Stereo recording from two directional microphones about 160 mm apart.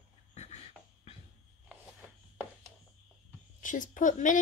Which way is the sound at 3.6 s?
55° left (ahead or behind).